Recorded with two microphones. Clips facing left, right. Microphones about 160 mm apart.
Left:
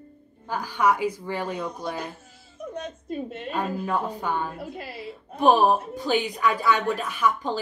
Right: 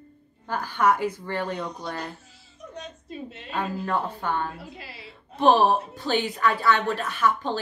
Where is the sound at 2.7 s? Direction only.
50° left (ahead or behind).